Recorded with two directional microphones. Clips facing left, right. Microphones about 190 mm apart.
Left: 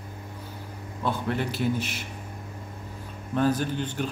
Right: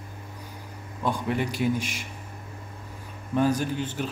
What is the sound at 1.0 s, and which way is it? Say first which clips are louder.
A man's voice: right 1 dB; 10° right (ahead or behind).